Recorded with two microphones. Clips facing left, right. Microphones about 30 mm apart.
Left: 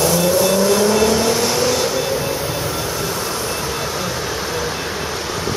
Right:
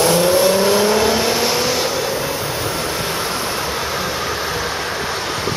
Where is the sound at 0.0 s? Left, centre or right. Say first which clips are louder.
Right 2 dB; right; by 1.9 s centre.